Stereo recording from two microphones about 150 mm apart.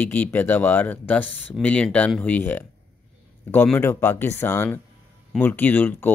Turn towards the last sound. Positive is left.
turn(degrees=10)  # may be behind; listen again after turning